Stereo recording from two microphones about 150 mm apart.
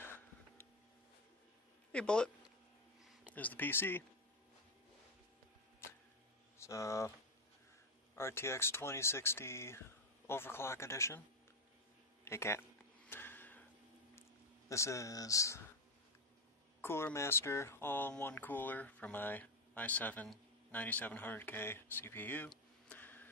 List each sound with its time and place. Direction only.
0.0 s a sound: 15° left (ahead or behind)
1.9 s a man's voice: 5° left (ahead or behind)
6.6 s speech: 20° left (ahead or behind)
8.2 s speech: 15° left (ahead or behind)
12.3 s speech: 15° left (ahead or behind)
13.0 s a sound: 15° left (ahead or behind)
14.7 s speech: 20° left (ahead or behind)
16.8 s speech: 15° left (ahead or behind)
22.5 s a sound: 10° left (ahead or behind)